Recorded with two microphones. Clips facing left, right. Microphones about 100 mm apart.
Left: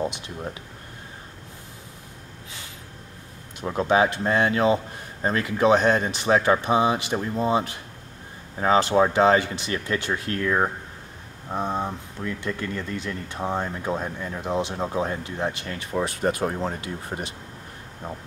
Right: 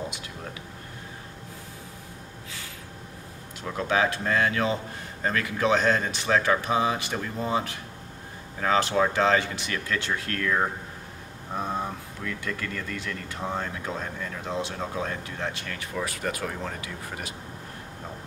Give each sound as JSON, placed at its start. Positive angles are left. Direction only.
{"t": 3.6, "sound": "speech", "side_deg": 20}